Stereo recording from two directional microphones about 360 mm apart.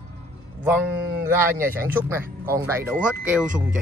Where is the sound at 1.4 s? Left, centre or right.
Centre.